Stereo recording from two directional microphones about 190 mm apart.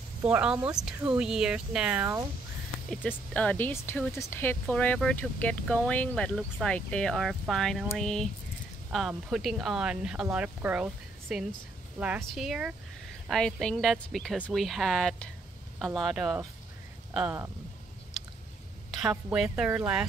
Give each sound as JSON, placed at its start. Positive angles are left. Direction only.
{"t": 0.2, "sound": "a woman's voice", "side_deg": -5}
{"t": 2.9, "sound": "a woman's voice", "side_deg": 5}
{"t": 18.9, "sound": "a woman's voice", "side_deg": 0}